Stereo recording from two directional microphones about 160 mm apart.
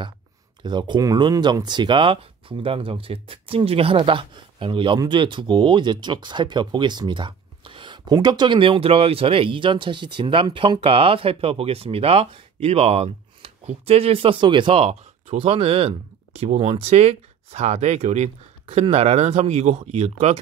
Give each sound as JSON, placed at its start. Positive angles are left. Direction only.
{"t": 0.6, "sound": "speech", "side_deg": -30}